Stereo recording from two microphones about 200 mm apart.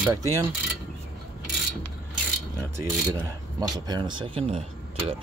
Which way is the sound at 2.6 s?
15° right (ahead or behind).